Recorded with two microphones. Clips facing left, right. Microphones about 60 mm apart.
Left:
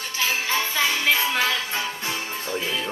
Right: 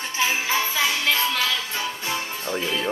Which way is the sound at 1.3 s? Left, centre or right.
Left.